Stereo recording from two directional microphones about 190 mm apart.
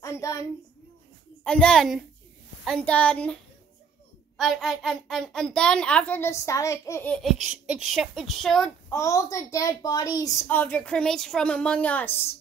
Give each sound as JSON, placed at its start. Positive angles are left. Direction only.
{"t": 0.0, "sound": "a sound", "side_deg": 15}
{"t": 1.4, "sound": "a child's voice", "side_deg": 5}
{"t": 4.4, "sound": "a child's voice", "side_deg": 0}
{"t": 8.8, "sound": "a woman's voice", "side_deg": 15}